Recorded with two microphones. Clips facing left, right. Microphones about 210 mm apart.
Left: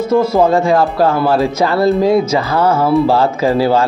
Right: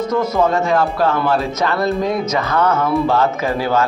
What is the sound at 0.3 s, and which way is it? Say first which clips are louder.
Speech: left 4 dB; 30° left (ahead or behind).